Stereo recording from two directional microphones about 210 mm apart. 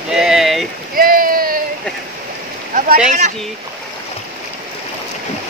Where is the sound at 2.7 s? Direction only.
40° right (ahead or behind).